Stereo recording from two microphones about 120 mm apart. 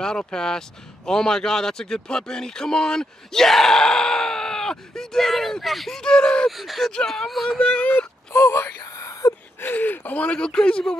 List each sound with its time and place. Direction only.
0.0 s speech: 5° left (ahead or behind)
7.5 s a sound: 10° left (ahead or behind)
9.7 s speech: 15° left (ahead or behind)